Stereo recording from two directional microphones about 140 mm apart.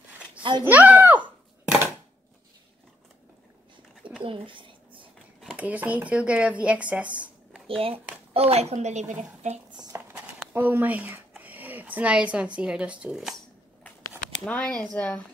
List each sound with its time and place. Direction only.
0.4 s a child's voice: 35° right (ahead or behind)
0.7 s speech: 10° right (ahead or behind)
4.2 s a sound: 40° right (ahead or behind)
5.4 s speech: 5° right (ahead or behind)
8.3 s a child's voice: 45° right (ahead or behind)
9.9 s a sound: 15° right (ahead or behind)
12.5 s speech: 5° right (ahead or behind)
14.4 s speech: 5° left (ahead or behind)